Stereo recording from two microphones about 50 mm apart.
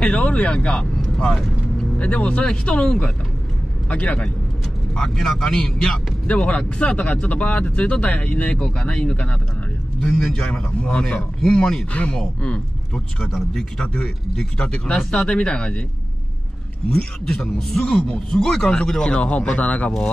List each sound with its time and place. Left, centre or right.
0.0 s speech: left
8.5 s speech: centre
10.1 s speech: centre
11.9 s speech: left
16.8 s a man's voice: centre; by 19.9 s left